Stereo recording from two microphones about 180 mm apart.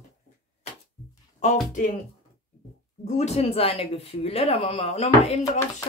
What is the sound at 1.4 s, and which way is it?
Speech, 40° left (ahead or behind).